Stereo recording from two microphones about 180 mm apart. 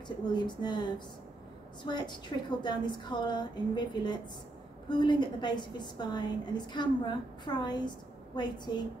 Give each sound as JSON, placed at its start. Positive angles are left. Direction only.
{"t": 0.3, "sound": "a woman's voice", "side_deg": 25}